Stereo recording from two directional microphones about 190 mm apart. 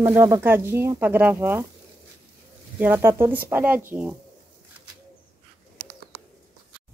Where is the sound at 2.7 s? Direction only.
10° right (ahead or behind).